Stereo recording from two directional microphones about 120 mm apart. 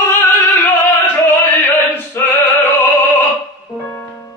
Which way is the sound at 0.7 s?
20° left (ahead or behind).